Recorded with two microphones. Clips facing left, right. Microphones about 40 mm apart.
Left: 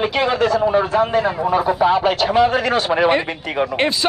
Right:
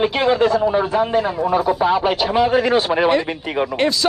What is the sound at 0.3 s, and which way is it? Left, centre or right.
A man's voice, centre.